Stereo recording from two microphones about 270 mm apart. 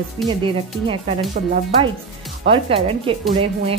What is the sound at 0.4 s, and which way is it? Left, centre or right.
A woman's voice, centre.